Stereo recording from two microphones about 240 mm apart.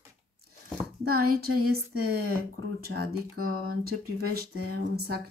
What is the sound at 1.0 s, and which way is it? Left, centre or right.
Speech, right.